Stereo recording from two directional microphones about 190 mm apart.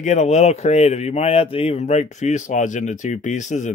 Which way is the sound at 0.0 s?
40° left (ahead or behind).